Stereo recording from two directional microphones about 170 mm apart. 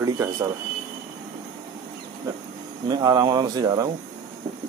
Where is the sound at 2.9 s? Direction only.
20° right (ahead or behind).